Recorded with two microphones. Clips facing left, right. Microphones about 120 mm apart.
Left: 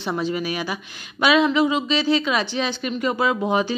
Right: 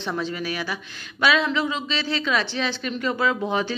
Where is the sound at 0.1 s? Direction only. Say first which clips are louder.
Left 4 dB; 15° left (ahead or behind).